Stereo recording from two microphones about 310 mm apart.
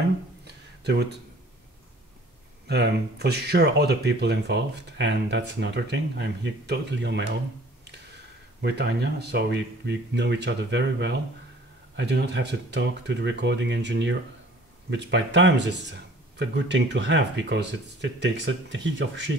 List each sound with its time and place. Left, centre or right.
2.7 s speech: right
8.5 s speech: right